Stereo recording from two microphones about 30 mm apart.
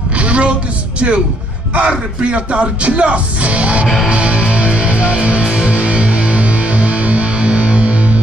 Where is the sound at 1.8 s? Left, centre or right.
Right.